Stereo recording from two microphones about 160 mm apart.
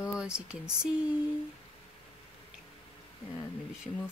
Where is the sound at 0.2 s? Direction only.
5° right (ahead or behind).